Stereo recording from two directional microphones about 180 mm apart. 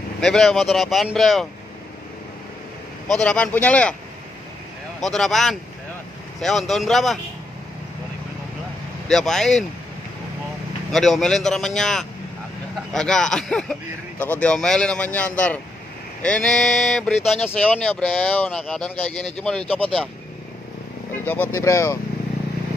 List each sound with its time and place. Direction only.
0.2 s speech: 5° left (ahead or behind)
3.1 s speech: 5° left (ahead or behind)
5.0 s speech: centre (ahead or behind)
9.0 s speech: centre (ahead or behind)
10.9 s speech: centre (ahead or behind)
21.3 s speech: 15° left (ahead or behind)